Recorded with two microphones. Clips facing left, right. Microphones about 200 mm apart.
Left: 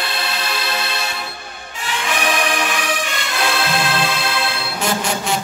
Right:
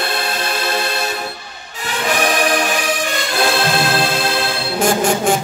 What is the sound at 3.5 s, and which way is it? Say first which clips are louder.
Music: right 2 dB; 40° right (ahead or behind).